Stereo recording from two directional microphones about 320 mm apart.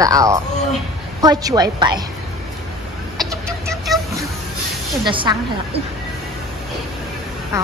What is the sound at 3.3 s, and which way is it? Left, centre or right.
Vehicle, centre.